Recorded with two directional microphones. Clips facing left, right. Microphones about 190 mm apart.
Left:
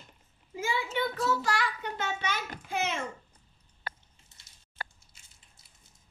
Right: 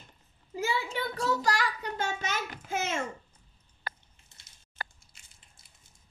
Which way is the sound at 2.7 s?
45° right (ahead or behind).